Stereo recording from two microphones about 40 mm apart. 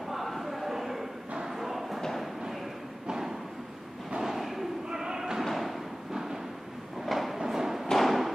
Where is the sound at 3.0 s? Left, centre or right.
Centre.